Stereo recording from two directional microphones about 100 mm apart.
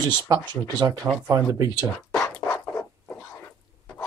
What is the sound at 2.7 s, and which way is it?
Zipper, 15° left (ahead or behind).